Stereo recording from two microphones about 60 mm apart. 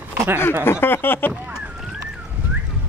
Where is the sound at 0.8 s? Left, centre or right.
Left.